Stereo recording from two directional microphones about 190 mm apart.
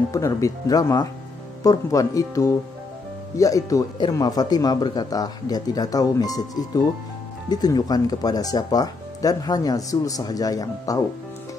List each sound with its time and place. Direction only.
0.1 s speech: 15° left (ahead or behind)